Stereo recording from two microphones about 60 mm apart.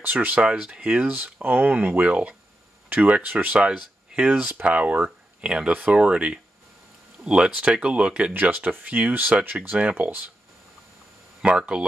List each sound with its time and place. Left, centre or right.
0.0 s speech: right
0.4 s speech: centre
5.4 s speech: centre
5.7 s speech: right
8.3 s speech: right
9.9 s speech: right
11.4 s speech: centre